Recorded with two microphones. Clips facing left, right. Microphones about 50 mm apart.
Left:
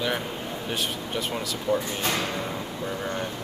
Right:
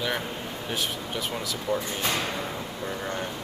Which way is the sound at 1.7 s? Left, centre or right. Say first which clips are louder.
Left 3 dB; centre.